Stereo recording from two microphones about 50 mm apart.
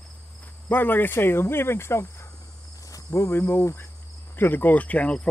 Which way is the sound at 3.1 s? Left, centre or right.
Left.